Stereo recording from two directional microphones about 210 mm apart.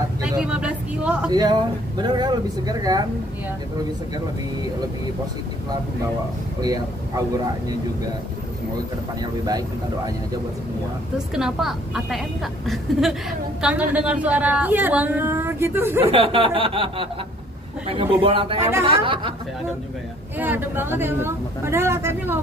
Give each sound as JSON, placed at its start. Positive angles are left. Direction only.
{"t": 0.2, "sound": "vehicle", "side_deg": -5}
{"t": 1.3, "sound": "speech", "side_deg": -20}
{"t": 6.6, "sound": "a woman's voice", "side_deg": -15}
{"t": 11.3, "sound": "a woman's voice", "side_deg": 0}
{"t": 16.1, "sound": "speech", "side_deg": -25}
{"t": 20.3, "sound": "a woman's voice", "side_deg": -10}